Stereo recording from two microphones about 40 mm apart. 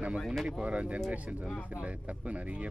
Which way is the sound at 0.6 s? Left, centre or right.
Right.